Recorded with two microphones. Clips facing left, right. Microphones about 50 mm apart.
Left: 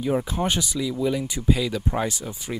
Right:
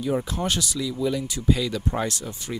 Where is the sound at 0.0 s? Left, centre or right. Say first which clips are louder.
Left 2 dB; centre.